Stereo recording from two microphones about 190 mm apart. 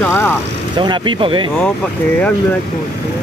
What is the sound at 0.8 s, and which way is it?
Speech, 25° right (ahead or behind).